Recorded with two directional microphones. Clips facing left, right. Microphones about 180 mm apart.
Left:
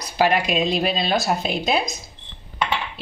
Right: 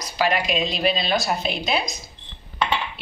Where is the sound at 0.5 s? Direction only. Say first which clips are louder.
Left 2 dB; 45° left (ahead or behind).